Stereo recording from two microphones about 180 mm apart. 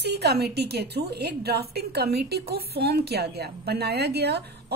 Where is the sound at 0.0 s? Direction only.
65° right (ahead or behind).